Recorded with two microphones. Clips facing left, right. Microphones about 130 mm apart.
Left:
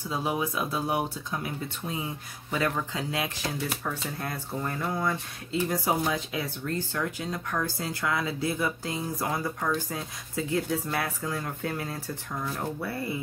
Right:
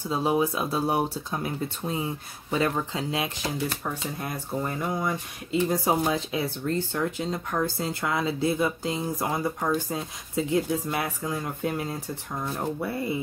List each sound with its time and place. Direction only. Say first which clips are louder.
0.1 s speech: right 5 dB; 30° right (ahead or behind)